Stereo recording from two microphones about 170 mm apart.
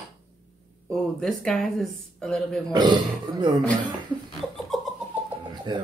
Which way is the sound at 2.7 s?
25° right (ahead or behind).